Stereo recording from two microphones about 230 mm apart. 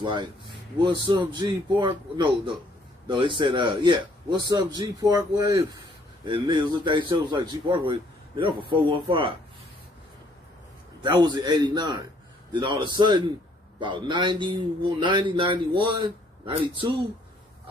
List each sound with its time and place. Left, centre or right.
0.0 s a man's voice: centre
11.0 s a man's voice: centre